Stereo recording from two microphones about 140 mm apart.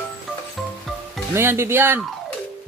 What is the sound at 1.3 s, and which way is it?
Speech, 20° right (ahead or behind).